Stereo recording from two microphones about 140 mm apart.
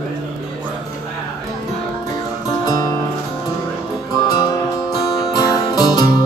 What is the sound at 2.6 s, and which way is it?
Music, 25° left (ahead or behind).